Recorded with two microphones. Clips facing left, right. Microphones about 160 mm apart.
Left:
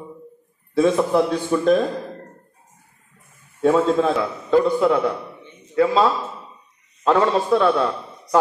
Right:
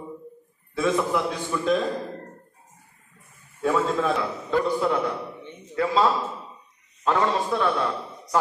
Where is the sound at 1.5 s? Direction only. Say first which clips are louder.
Left 9 dB; 35° left (ahead or behind).